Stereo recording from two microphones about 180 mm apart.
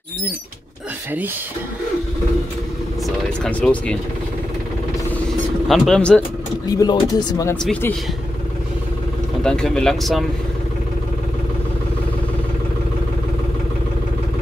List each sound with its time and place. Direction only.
3.4 s speech: 5° left (ahead or behind)
5.7 s speech: 5° left (ahead or behind)
6.7 s speech: 20° left (ahead or behind)
7.6 s speech: 5° left (ahead or behind)
9.4 s speech: 5° left (ahead or behind)